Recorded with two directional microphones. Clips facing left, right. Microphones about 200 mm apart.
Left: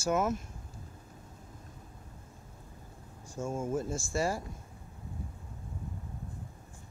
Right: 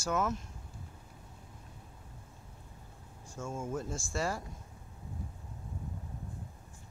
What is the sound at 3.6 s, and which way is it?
Speech, 25° left (ahead or behind).